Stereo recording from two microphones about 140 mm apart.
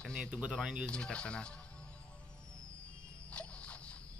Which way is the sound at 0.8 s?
5° left (ahead or behind).